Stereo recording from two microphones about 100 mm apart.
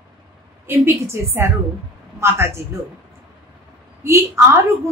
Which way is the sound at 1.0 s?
25° right (ahead or behind).